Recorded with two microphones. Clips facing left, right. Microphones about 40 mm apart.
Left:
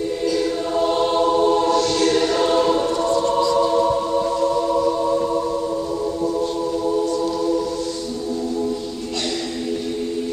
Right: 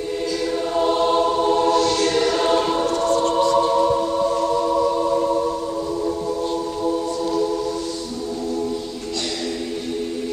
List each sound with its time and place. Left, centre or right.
0.7 s choir: centre
2.4 s choir: centre
3.3 s music: right
3.7 s music: centre